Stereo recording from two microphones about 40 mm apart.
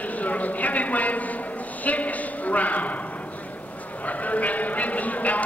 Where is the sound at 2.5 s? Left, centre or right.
Left.